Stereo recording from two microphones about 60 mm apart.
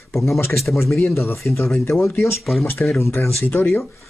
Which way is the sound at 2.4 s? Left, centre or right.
Centre.